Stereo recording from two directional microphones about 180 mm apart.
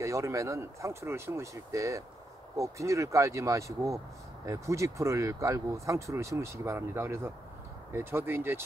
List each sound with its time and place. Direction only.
0.0 s speech: 15° right (ahead or behind)